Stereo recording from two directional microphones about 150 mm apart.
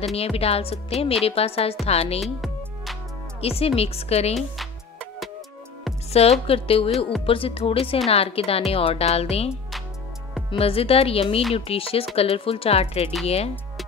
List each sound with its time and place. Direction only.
0.1 s a woman's voice: 40° left (ahead or behind)
2.2 s music: centre (ahead or behind)
3.3 s a woman's voice: 40° left (ahead or behind)
4.4 s music: centre (ahead or behind)
6.4 s a woman's voice: 40° left (ahead or behind)
9.5 s music: centre (ahead or behind)
10.5 s a woman's voice: 40° left (ahead or behind)